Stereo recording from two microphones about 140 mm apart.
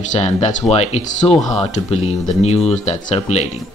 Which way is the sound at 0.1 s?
55° left (ahead or behind).